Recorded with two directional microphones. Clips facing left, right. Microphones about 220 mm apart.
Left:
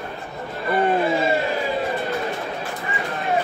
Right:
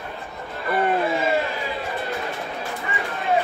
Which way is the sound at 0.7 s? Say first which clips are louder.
Left 2 dB; 30° left (ahead or behind).